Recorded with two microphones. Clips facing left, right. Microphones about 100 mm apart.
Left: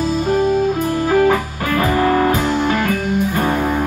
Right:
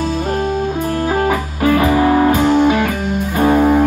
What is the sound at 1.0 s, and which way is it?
Music, 10° right (ahead or behind).